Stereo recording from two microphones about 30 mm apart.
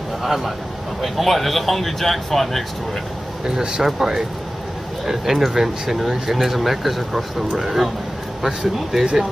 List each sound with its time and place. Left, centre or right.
0.2 s speech: centre
3.4 s speech: right
3.8 s speech: centre